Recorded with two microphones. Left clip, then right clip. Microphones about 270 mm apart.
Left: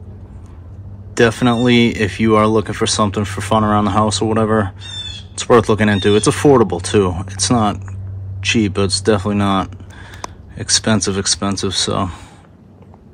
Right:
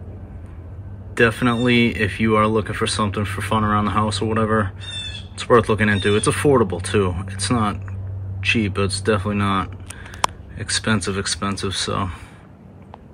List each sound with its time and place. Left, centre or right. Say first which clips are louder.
1.1 s speech: left 4 dB; centre
10.8 s speech: left 5 dB; centre